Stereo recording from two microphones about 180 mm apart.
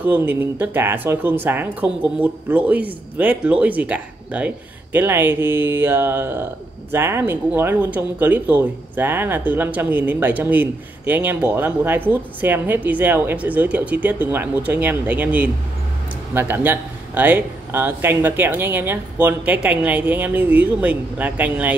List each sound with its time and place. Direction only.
0.0 s speech: 10° right (ahead or behind)